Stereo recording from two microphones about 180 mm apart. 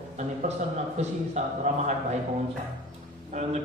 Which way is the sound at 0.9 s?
40° right (ahead or behind).